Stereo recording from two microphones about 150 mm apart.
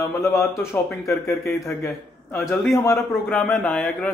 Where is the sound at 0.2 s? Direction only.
20° left (ahead or behind).